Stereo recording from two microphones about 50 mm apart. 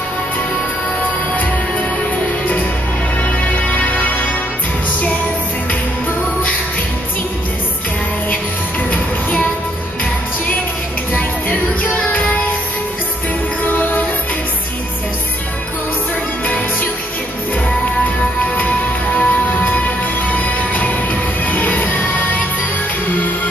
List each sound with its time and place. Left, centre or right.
3.2 s music: left
8.9 s music: left
11.1 s music: left
13.7 s music: left
16.4 s music: left
19.1 s music: left